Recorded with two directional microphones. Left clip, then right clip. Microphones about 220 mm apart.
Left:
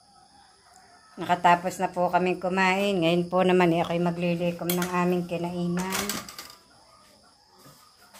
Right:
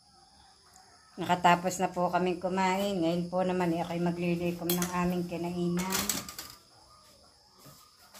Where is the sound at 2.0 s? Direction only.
15° left (ahead or behind); by 5.3 s 45° left (ahead or behind).